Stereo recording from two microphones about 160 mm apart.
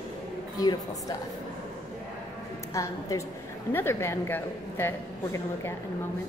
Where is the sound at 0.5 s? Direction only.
20° left (ahead or behind).